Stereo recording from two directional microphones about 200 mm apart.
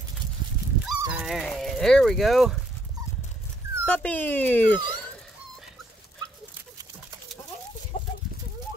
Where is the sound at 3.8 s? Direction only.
5° left (ahead or behind).